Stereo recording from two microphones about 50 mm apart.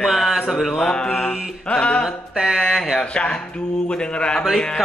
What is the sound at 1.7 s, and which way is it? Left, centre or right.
Music, left.